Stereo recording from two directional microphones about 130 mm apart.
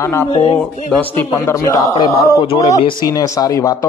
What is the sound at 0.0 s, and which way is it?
A man's voice, 20° left (ahead or behind).